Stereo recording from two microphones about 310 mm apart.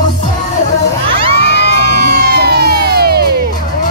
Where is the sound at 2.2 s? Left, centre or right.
Right.